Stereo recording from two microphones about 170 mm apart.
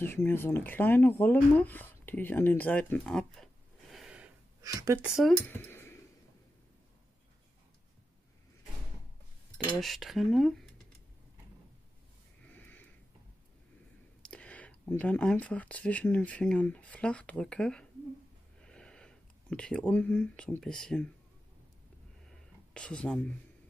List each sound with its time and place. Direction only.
0.0 s speech: 10° left (ahead or behind)
3.9 s gasp: 5° right (ahead or behind)
4.6 s speech: 20° right (ahead or behind)
5.0 s speech: 5° right (ahead or behind)
5.5 s a sound: 10° left (ahead or behind)
9.8 s speech: centre (ahead or behind)
12.4 s a sound: 10° left (ahead or behind)
14.2 s speech: 5° left (ahead or behind)
22.8 s speech: 5° left (ahead or behind)